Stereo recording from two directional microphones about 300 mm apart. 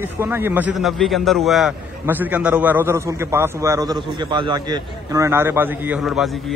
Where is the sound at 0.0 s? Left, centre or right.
Centre.